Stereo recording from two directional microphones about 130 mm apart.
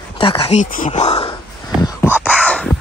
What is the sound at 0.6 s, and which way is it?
Speech, 90° left.